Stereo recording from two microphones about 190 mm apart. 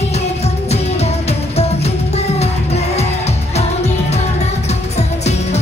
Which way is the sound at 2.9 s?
35° left (ahead or behind).